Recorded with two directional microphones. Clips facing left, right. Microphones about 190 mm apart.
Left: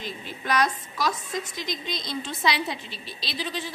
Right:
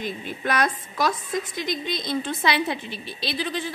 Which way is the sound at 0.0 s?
55° right (ahead or behind).